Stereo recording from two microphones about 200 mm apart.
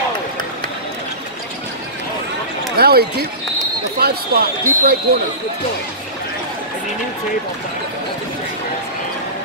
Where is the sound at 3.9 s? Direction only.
50° right (ahead or behind).